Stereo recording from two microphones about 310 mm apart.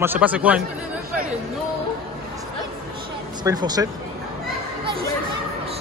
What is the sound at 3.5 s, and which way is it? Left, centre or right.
Speech, centre.